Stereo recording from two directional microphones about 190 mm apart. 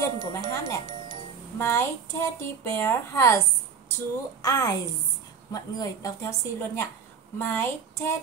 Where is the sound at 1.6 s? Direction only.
10° left (ahead or behind).